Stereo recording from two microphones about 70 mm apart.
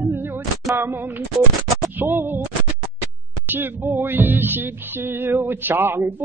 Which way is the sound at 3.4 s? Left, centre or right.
Right.